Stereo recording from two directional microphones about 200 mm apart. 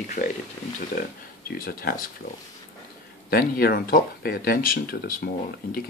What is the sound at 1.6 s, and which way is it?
Speech, 50° left (ahead or behind).